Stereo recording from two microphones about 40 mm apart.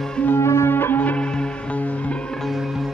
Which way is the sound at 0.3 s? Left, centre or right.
Left.